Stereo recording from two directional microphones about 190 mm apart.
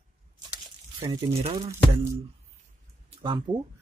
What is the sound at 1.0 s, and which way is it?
Speech, 25° right (ahead or behind).